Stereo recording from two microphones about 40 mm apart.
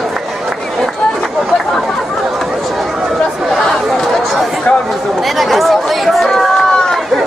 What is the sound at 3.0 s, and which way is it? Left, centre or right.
Chatter, centre.